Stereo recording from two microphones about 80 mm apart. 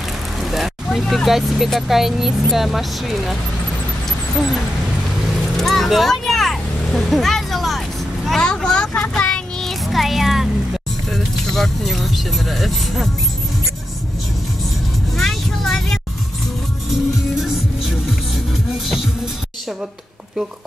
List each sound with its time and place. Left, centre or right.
0.4 s speech: centre
5.6 s vehicle: centre
9.1 s child singing: centre
11.1 s speech: centre
15.1 s vehicle: centre
16.9 s music: centre